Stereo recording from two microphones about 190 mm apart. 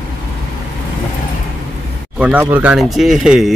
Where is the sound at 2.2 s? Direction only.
10° right (ahead or behind).